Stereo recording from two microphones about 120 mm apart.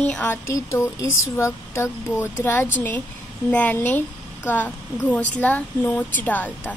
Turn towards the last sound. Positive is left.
turn(degrees=15)  # may be behind; listen again after turning